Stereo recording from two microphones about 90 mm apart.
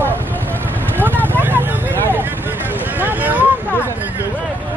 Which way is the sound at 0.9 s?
20° right (ahead or behind).